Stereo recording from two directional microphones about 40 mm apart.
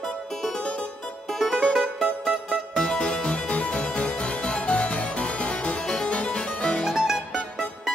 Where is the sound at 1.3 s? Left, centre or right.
Centre.